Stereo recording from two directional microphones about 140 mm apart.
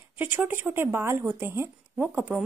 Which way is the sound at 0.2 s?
15° right (ahead or behind).